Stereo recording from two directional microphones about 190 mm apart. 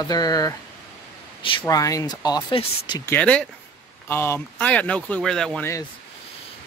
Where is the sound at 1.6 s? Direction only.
20° left (ahead or behind).